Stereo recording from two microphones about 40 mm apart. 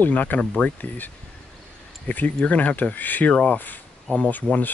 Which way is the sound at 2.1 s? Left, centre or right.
Left.